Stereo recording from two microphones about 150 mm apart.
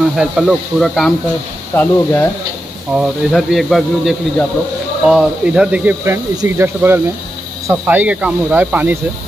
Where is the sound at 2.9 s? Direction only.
5° right (ahead or behind).